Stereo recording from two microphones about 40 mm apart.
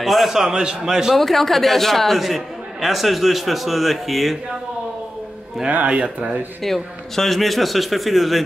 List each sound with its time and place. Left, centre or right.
0.0 s a man's voice: centre
0.3 s a man's voice: centre
1.1 s a man's voice: centre
5.9 s speech: right
6.6 s a man's voice: centre